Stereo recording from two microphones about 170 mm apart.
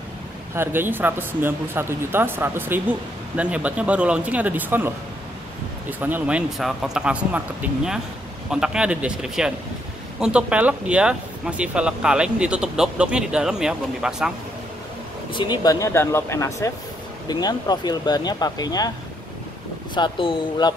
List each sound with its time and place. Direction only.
0.6 s speech: 10° right (ahead or behind)
15.3 s speech: 25° left (ahead or behind)
19.9 s speech: 30° left (ahead or behind)